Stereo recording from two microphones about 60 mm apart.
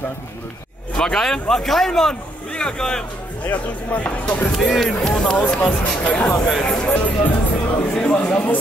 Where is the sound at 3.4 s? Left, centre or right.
Left.